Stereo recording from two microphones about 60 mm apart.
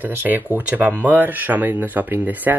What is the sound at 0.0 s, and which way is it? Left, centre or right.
Speech, right.